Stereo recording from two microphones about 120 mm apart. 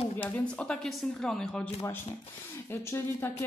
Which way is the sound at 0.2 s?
10° left (ahead or behind).